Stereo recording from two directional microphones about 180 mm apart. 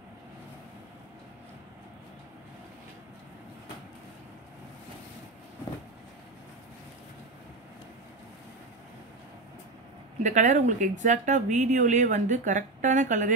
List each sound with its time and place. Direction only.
10.2 s speech: 40° right (ahead or behind)